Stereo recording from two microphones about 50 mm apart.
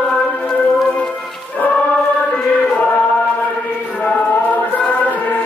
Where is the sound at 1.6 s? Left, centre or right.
Left.